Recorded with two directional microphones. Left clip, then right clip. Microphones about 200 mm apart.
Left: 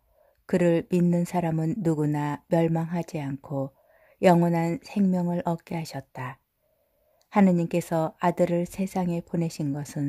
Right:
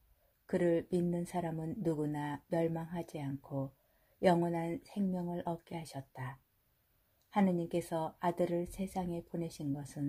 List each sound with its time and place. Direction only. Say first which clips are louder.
0.5 s speech: left 9 dB; 30° left (ahead or behind)